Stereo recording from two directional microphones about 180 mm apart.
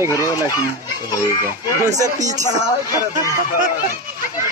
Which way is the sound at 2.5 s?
15° right (ahead or behind).